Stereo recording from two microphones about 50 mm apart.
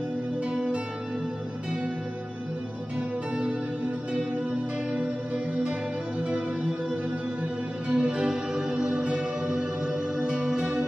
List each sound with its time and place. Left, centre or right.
0.5 s music: right
3.0 s music: right
4.9 s music: right
7.9 s music: right